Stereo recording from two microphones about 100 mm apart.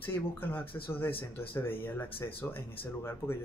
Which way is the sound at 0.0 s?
20° left (ahead or behind).